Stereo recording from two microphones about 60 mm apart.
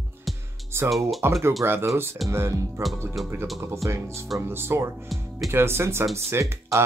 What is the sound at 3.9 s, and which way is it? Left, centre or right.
Speech, right.